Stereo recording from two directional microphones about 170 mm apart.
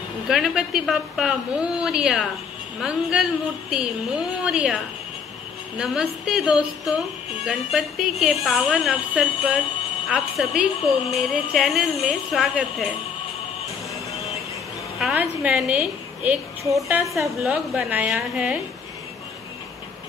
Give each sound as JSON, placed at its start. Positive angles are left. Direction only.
{"t": 0.3, "sound": "speech", "side_deg": -5}
{"t": 15.0, "sound": "a woman's voice", "side_deg": -5}